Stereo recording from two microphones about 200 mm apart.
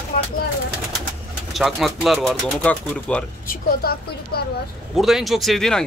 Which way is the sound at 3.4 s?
50° left (ahead or behind).